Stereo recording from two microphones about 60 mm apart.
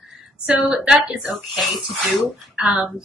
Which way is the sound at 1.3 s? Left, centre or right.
Centre.